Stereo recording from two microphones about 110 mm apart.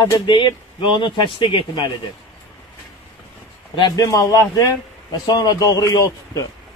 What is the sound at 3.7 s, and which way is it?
Speech, 35° left (ahead or behind).